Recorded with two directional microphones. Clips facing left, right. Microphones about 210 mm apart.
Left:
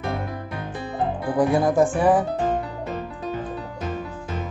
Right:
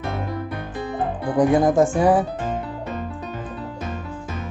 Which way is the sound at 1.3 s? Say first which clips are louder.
Right 3 dB; 20° right (ahead or behind).